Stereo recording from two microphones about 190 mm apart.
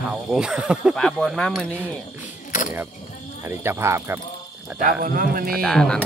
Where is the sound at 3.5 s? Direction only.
15° right (ahead or behind).